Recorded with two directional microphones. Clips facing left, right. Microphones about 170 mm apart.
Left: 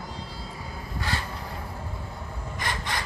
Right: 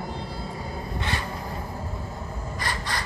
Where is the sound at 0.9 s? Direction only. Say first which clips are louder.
Even; 20° right (ahead or behind).